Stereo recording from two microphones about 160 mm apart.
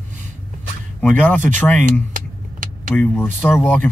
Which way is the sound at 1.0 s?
10° left (ahead or behind).